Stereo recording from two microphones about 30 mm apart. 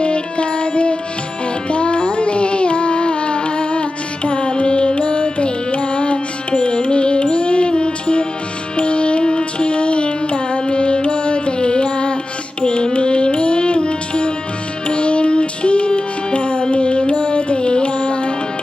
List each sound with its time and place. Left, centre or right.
0.0 s music: left